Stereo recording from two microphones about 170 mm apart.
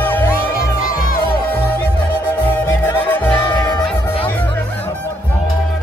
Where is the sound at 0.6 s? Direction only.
60° left (ahead or behind).